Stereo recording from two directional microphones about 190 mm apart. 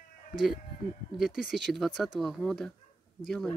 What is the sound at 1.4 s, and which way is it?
Speech, centre (ahead or behind).